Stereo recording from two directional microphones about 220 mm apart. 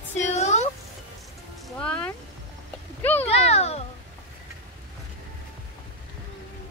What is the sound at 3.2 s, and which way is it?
Speech, 30° left (ahead or behind).